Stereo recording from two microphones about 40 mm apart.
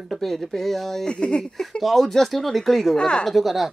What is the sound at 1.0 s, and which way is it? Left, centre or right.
Speech, left.